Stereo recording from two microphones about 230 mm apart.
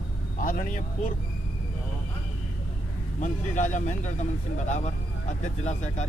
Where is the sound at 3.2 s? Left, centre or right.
Left.